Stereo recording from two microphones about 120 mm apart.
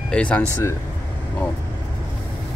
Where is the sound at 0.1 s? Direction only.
10° left (ahead or behind).